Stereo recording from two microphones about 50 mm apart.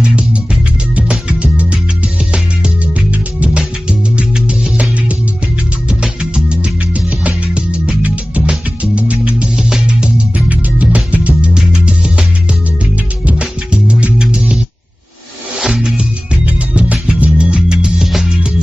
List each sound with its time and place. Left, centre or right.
0.0 s music: right
5.9 s music: right
9.6 s music: centre
9.8 s music: right
11.5 s music: centre
13.3 s music: right
15.6 s music: centre
16.4 s music: right; by 18.3 s centre